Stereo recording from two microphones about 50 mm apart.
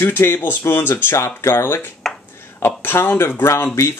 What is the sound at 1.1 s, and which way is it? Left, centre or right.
Speech, left.